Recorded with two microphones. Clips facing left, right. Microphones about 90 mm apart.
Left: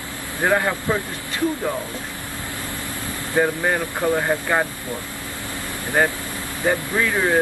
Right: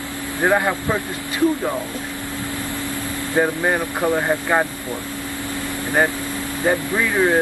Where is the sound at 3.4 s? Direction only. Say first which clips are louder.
Right 1 dB; 15° right (ahead or behind).